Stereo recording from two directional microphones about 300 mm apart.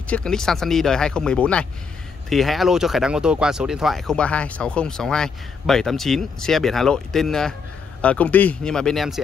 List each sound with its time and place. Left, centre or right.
0.1 s speech: centre